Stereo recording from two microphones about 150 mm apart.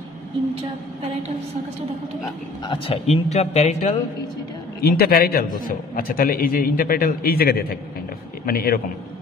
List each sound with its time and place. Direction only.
2.6 s speech: 30° left (ahead or behind)
3.1 s speech: 45° left (ahead or behind)
4.8 s a man's voice: 90° left
5.7 s a man's voice: 75° left (ahead or behind)